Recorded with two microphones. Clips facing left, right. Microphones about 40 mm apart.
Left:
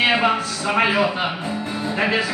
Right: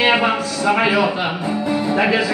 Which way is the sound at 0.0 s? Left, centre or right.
Right.